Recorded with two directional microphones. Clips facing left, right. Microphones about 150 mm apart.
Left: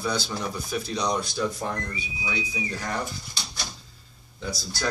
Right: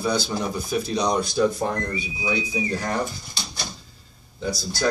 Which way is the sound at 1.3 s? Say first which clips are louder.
Right 7 dB; 40° right (ahead or behind).